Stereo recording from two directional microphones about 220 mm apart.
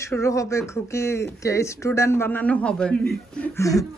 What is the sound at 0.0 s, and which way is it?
Speech, 15° left (ahead or behind).